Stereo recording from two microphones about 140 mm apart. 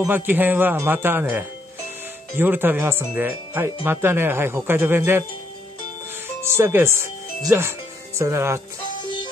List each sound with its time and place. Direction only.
0.0 s speech: 15° right (ahead or behind)
6.4 s speech: 15° right (ahead or behind)